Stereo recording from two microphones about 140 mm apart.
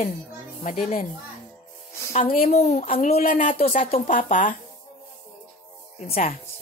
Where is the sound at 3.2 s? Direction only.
80° left.